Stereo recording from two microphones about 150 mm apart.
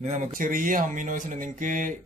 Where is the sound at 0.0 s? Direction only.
55° right (ahead or behind).